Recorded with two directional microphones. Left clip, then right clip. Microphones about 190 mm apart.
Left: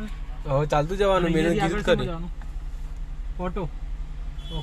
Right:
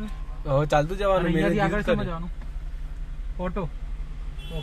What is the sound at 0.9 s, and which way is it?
Speech, 15° left (ahead or behind).